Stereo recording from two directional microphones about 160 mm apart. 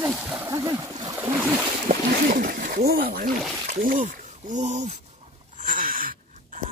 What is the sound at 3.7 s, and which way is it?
Speech, 60° right (ahead or behind).